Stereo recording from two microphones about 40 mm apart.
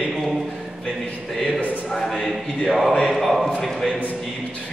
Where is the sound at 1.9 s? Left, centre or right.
Centre.